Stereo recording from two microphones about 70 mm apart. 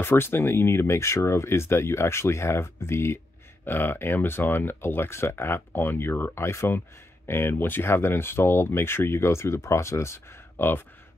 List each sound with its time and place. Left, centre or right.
0.0 s speech: left